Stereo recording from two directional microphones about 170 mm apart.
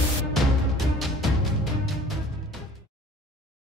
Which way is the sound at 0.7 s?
Centre (ahead or behind).